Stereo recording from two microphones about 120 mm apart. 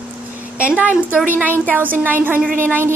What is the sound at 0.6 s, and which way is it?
A woman's voice, 10° right (ahead or behind).